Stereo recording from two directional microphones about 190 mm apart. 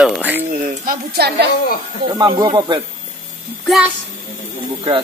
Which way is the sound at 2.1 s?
25° right (ahead or behind).